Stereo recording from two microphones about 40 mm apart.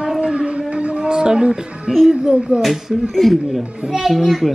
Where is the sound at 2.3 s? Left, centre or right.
Right.